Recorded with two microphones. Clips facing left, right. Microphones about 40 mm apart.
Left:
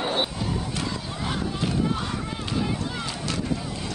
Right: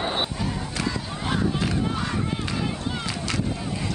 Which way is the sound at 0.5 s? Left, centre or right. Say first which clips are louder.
Right 1 dB; right.